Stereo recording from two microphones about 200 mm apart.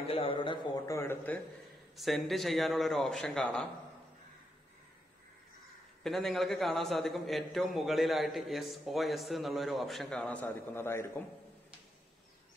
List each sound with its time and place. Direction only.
0.1 s a man's voice: 25° left (ahead or behind); by 3.6 s 5° left (ahead or behind)
6.0 s a man's voice: centre (ahead or behind)